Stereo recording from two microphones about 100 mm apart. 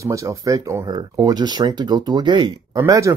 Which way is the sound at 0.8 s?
45° right (ahead or behind).